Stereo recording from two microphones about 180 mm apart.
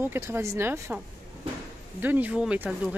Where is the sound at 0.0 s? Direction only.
15° right (ahead or behind).